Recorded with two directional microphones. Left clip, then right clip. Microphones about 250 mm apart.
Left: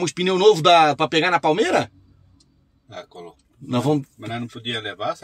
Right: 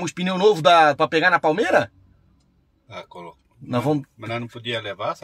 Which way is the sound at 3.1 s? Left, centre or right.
Right.